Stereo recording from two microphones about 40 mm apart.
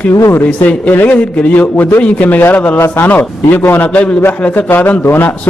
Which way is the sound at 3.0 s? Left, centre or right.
Left.